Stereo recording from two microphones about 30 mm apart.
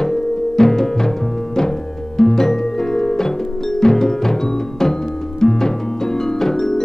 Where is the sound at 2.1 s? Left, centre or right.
Centre.